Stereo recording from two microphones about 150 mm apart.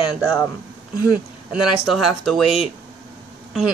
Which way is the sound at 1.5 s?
5° right (ahead or behind).